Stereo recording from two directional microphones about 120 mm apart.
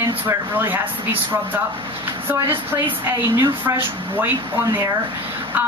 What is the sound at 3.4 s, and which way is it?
A woman's voice, 15° right (ahead or behind).